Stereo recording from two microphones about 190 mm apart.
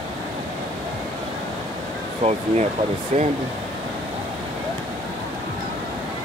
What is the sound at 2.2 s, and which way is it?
Speech, 35° right (ahead or behind).